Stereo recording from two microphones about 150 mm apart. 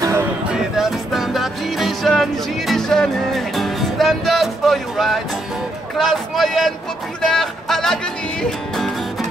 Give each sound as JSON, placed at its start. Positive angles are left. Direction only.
{"t": 0.5, "sound": "music", "side_deg": -5}